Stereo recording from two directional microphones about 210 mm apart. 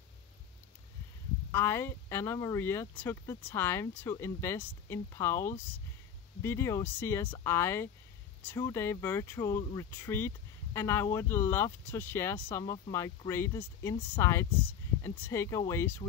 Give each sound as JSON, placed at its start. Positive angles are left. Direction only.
{"t": 1.5, "sound": "speech", "side_deg": 10}